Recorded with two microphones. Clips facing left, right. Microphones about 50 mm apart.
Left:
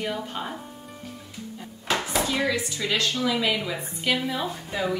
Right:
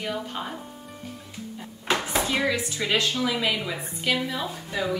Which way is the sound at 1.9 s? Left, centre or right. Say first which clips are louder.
Even; right.